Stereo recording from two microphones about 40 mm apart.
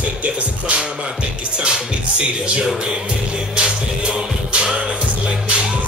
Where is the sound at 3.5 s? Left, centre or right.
Right.